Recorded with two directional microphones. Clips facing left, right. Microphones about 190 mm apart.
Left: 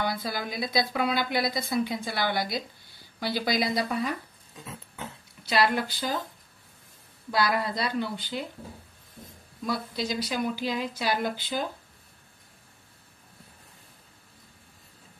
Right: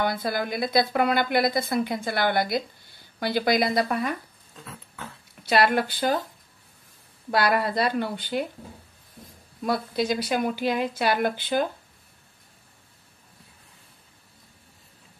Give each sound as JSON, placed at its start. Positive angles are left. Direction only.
{"t": 0.0, "sound": "speech", "side_deg": -55}
{"t": 4.6, "sound": "a sound", "side_deg": 20}
{"t": 5.5, "sound": "speech", "side_deg": -55}
{"t": 7.2, "sound": "speech", "side_deg": -60}
{"t": 9.7, "sound": "speech", "side_deg": -55}